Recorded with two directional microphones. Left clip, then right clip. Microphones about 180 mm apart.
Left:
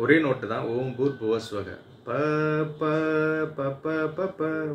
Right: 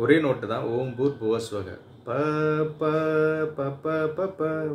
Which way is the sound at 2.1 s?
20° right (ahead or behind).